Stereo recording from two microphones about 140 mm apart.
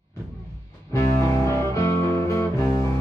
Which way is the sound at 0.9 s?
20° left (ahead or behind).